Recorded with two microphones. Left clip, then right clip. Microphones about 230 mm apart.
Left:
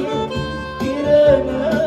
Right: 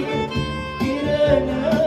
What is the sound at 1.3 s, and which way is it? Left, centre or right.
Music, right.